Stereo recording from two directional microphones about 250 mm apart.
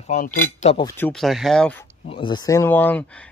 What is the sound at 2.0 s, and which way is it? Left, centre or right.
Speech, left.